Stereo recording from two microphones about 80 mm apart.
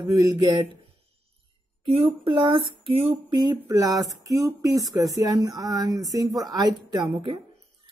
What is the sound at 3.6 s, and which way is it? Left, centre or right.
Speech, right.